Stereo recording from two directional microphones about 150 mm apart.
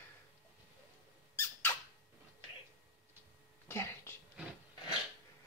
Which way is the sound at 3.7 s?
15° left (ahead or behind).